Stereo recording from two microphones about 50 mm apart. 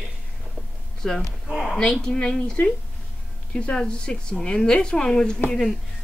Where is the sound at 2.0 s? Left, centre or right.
Centre.